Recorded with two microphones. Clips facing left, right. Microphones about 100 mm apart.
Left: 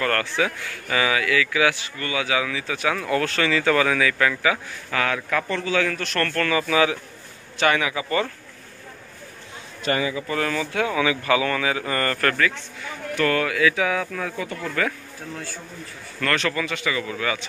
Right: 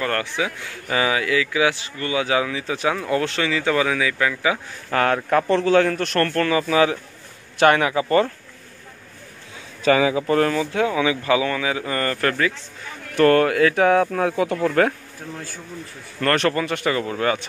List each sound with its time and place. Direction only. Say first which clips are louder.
0.0 s speech: left 1 dB; 15° right (ahead or behind)
4.9 s speech: right 5 dB; 45° right (ahead or behind)
6.2 s speech: even; 30° right (ahead or behind)
7.5 s speech: right 5 dB; 50° right (ahead or behind)
9.9 s speech: right 6 dB; 80° right
10.5 s speech: right 3 dB; 25° right (ahead or behind)
13.1 s speech: right 7 dB; 45° right (ahead or behind)
14.3 s speech: right 9 dB; 70° right (ahead or behind)
16.3 s speech: right 4 dB; 50° right (ahead or behind)